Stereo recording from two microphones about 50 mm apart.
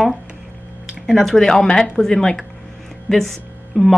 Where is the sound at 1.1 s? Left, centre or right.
Centre.